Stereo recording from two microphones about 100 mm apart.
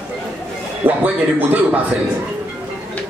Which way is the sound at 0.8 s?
15° right (ahead or behind).